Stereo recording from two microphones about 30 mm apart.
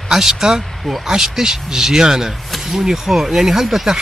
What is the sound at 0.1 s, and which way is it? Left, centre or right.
Speech, centre.